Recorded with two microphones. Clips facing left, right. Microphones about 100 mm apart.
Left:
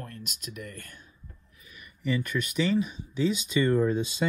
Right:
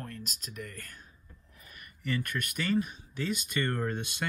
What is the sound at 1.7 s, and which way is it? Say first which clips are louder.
Speech: left 4 dB; 55° right (ahead or behind).